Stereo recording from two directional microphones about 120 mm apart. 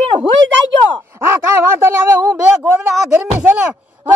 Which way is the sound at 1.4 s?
20° right (ahead or behind).